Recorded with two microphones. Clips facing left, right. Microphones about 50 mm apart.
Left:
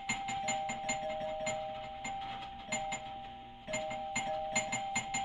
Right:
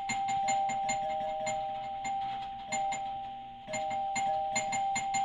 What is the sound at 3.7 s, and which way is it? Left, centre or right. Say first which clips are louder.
Music: right 5 dB; left.